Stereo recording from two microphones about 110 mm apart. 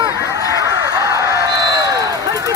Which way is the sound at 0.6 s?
30° right (ahead or behind).